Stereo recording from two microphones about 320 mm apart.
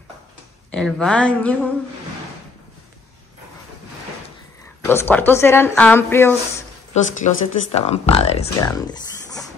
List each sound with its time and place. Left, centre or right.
0.7 s speech: centre
4.8 s speech: centre
6.9 s speech: left